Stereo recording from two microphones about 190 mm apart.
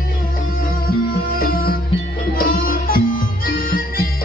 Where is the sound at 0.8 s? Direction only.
50° left (ahead or behind).